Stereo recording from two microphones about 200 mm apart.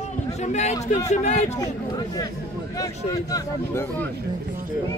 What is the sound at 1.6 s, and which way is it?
Speech, 20° left (ahead or behind).